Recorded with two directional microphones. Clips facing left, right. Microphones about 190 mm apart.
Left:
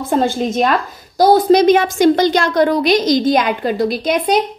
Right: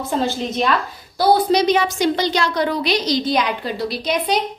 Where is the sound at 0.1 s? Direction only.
50° left (ahead or behind).